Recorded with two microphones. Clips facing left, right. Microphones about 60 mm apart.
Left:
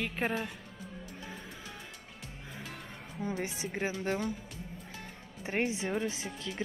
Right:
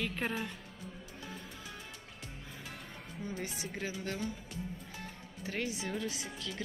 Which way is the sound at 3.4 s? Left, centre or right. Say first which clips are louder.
Left 4 dB; left.